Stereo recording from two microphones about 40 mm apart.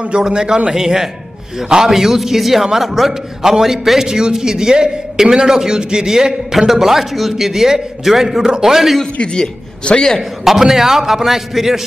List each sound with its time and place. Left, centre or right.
0.2 s a man's voice: centre
9.2 s a man's voice: left
10.4 s a man's voice: centre